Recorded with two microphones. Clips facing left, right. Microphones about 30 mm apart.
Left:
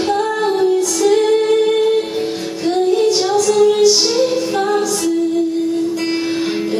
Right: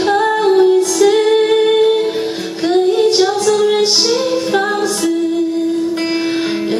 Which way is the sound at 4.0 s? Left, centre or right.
Centre.